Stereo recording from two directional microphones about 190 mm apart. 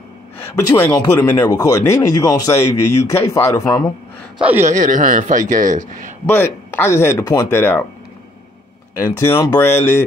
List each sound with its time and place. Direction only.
0.4 s a man's voice: 10° left (ahead or behind)
4.4 s speech: 10° right (ahead or behind)
4.7 s a man's voice: 40° right (ahead or behind)
6.2 s a man's voice: 10° left (ahead or behind)
8.9 s a man's voice: 15° left (ahead or behind)